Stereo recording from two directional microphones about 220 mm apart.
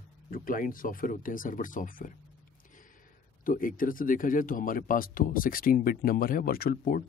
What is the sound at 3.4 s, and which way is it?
Speech, 40° left (ahead or behind).